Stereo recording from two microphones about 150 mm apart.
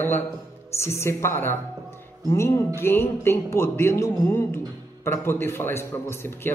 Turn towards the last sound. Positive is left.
turn(degrees=15)  # may be behind; listen again after turning